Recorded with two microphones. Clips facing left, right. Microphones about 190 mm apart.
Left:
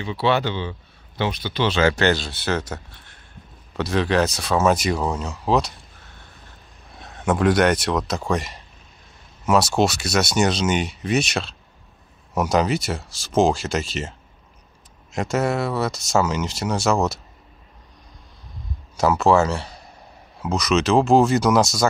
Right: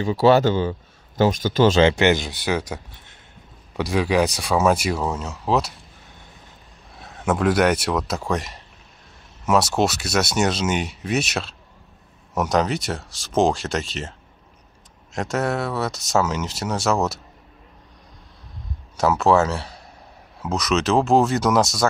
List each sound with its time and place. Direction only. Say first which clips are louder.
0.0 s speech: right 6 dB; 40° right (ahead or behind)
1.8 s speech: right 2 dB; 20° right (ahead or behind); by 5.7 s 5° right (ahead or behind)
7.0 s speech: left 1 dB; 5° right (ahead or behind)
15.1 s speech: left 1 dB; centre (ahead or behind)
18.9 s speech: even; centre (ahead or behind)